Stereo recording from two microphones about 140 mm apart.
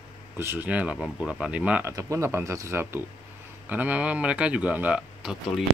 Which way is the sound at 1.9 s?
25° right (ahead or behind).